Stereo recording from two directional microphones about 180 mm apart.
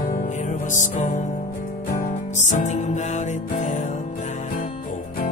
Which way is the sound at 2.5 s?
45° left (ahead or behind).